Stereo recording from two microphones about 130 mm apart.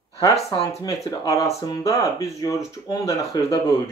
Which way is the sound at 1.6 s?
25° left (ahead or behind).